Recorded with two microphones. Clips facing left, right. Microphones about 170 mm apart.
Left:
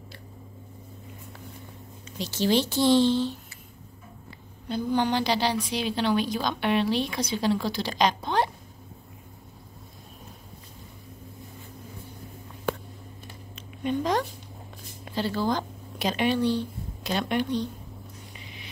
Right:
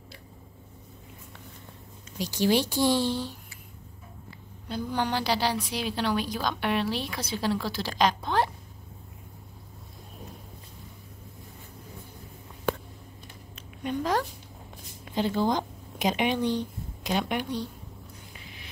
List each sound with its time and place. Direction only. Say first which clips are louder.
2.1 s a woman's voice: even; 15° right (ahead or behind)
4.6 s a woman's voice: left 4 dB; 10° right (ahead or behind)
13.8 s speech: left 2 dB; 5° right (ahead or behind)
15.1 s speech: right 1 dB; 20° right (ahead or behind)